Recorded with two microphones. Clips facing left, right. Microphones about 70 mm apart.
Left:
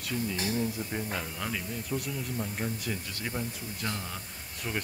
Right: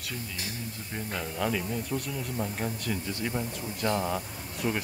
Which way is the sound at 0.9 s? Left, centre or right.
Centre.